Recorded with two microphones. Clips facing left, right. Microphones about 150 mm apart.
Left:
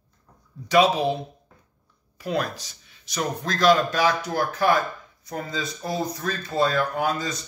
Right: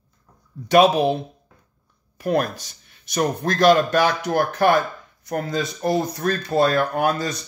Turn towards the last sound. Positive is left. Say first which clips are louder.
# right 4 dB
turn(degrees=-60)  # may be behind; listen again after turning